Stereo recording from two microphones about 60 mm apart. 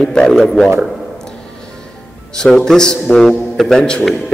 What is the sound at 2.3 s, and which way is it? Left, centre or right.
A man's voice, centre.